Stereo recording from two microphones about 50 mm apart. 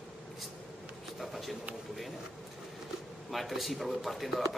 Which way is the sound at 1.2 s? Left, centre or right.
Centre.